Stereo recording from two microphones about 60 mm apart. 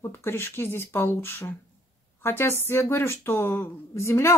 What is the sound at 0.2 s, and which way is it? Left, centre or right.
Speech, left.